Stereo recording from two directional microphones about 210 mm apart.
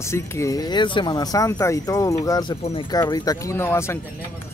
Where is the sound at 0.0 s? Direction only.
15° left (ahead or behind).